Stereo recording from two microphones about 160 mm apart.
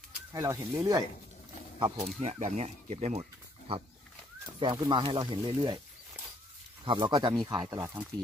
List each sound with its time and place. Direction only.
0.3 s speech: 20° right (ahead or behind)
1.8 s speech: 35° right (ahead or behind)
2.1 s speech: 45° right (ahead or behind); by 5.8 s 30° right (ahead or behind)
6.8 s speech: 30° right (ahead or behind)